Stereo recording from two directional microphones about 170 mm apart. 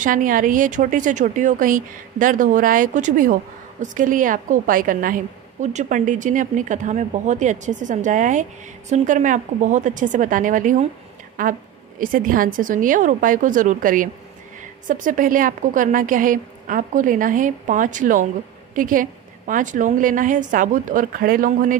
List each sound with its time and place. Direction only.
0.0 s a woman's voice: 50° right (ahead or behind)